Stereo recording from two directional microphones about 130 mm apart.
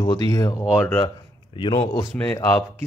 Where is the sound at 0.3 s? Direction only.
30° left (ahead or behind).